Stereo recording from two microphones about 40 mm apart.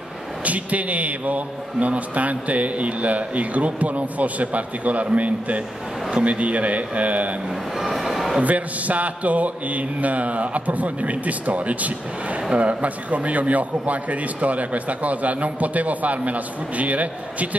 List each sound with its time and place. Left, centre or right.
0.5 s a man's voice: right
7.8 s music: centre
8.4 s a man's voice: right